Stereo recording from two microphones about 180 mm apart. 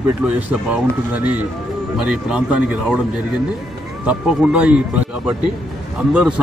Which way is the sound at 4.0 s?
5° right (ahead or behind).